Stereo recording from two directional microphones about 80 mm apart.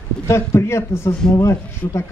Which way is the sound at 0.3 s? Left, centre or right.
Left.